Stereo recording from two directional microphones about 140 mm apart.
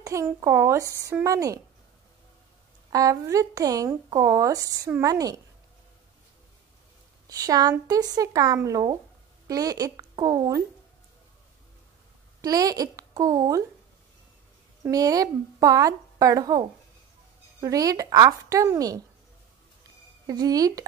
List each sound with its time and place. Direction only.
0.0 s speech: 25° right (ahead or behind)
2.9 s speech: 25° right (ahead or behind)
7.2 s speech: 25° right (ahead or behind)
12.4 s speech: 25° right (ahead or behind)
14.8 s speech: 25° right (ahead or behind)
20.2 s speech: 25° right (ahead or behind)